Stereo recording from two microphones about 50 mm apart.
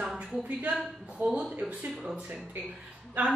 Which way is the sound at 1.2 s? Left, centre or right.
Right.